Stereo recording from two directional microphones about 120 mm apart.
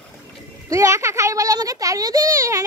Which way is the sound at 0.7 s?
25° right (ahead or behind).